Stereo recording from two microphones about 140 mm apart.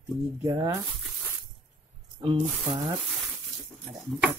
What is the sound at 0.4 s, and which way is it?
Speech, 25° right (ahead or behind).